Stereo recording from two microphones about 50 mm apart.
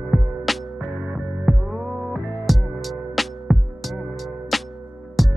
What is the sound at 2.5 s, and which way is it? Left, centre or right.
Music, centre.